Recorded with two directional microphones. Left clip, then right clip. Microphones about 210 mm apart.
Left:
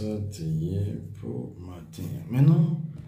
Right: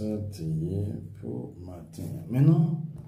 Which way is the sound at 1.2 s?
10° left (ahead or behind).